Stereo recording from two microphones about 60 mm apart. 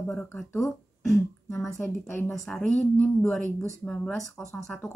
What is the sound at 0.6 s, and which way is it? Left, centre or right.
Speech, centre.